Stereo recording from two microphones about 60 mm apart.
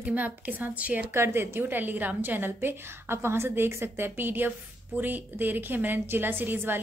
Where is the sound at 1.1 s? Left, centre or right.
Right.